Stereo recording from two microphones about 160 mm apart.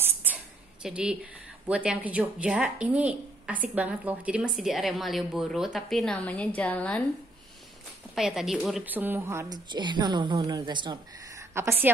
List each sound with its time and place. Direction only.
0.0 s a sound: 10° right (ahead or behind)
0.8 s speech: 5° right (ahead or behind)
8.1 s a woman's voice: 5° right (ahead or behind); by 11.4 s 30° right (ahead or behind)
11.5 s a woman's voice: 15° right (ahead or behind)